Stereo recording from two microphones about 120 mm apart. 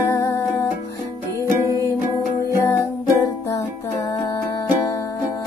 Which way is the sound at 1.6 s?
30° right (ahead or behind).